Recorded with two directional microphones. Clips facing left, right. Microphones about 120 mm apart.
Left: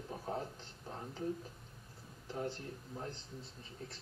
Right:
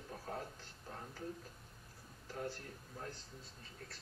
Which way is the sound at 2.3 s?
20° left (ahead or behind).